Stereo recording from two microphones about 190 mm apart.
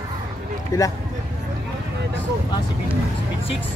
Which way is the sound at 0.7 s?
20° left (ahead or behind).